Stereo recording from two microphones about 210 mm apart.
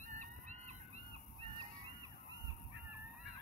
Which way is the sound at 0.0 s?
35° right (ahead or behind).